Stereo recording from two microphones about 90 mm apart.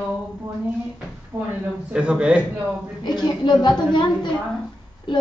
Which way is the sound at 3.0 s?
55° left (ahead or behind).